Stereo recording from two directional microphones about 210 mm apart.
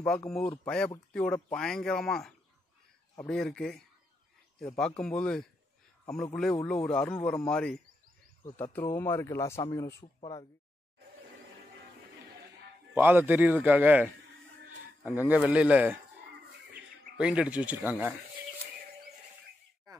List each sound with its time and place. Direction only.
0.0 s speech: 5° left (ahead or behind)
8.5 s speech: 20° left (ahead or behind)
12.9 s a man's voice: 10° right (ahead or behind)
17.2 s speech: 5° right (ahead or behind)